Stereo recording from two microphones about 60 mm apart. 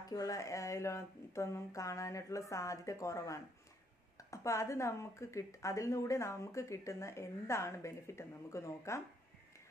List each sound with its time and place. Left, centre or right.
0.1 s a woman's voice: left